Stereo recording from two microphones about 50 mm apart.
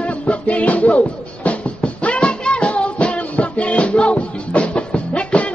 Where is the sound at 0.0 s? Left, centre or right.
Left.